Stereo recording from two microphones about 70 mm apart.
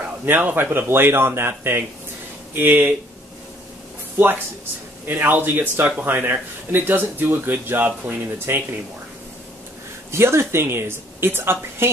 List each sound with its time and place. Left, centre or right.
0.2 s a woman's voice: right
5.0 s speech: right
10.1 s a woman's voice: right